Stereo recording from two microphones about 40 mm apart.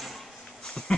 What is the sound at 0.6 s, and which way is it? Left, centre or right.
Dog, centre.